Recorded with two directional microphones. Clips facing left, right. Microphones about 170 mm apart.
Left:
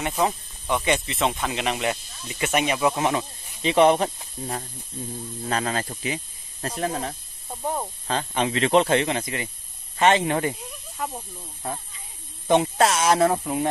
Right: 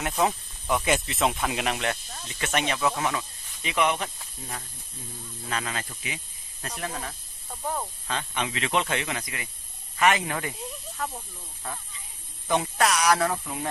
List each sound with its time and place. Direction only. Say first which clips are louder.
0.0 s speech: left 1 dB; 5° left (ahead or behind); by 7.2 s 35° left (ahead or behind)
7.6 s speech: left 3 dB; 25° left (ahead or behind)
8.1 s speech: left 7 dB; 35° left (ahead or behind)
11.0 s speech: left 3 dB; 15° left (ahead or behind)